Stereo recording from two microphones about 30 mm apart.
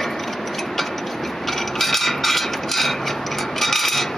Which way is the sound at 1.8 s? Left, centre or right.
Centre.